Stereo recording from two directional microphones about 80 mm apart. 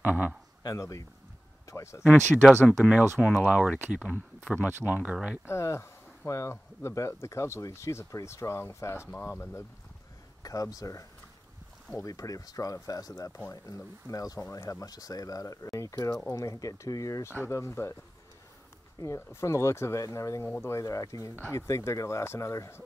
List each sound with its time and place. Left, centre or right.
0.0 s speech: right
0.7 s speech: left
2.8 s speech: centre
4.5 s speech: right
5.5 s speech: left
10.4 s speech: left
18.9 s speech: left